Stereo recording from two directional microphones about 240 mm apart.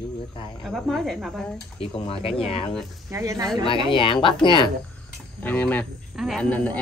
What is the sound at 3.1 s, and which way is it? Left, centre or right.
Mechanisms, centre.